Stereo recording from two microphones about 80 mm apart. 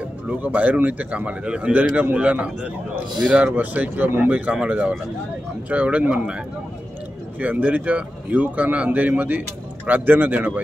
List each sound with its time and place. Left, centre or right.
0.3 s a man's voice: right